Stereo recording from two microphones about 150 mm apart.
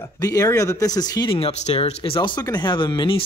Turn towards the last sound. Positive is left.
turn(degrees=30)  # may be behind; listen again after turning